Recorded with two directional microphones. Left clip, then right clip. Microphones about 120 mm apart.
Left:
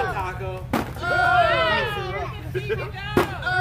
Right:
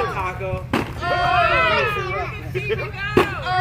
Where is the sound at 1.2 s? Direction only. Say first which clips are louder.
Right 1 dB; 10° left (ahead or behind).